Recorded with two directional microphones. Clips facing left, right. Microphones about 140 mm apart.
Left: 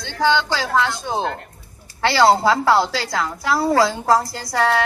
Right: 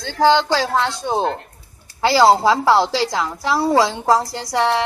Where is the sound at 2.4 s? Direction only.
30° right (ahead or behind).